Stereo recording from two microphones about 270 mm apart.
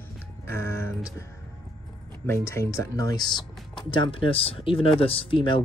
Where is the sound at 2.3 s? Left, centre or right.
Centre.